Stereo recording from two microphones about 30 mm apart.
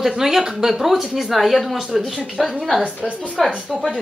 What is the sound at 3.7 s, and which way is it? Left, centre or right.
Child singing, centre.